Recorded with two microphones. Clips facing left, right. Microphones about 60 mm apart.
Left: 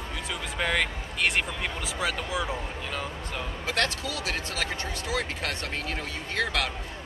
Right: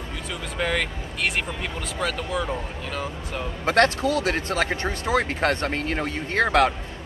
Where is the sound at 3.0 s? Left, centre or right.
Centre.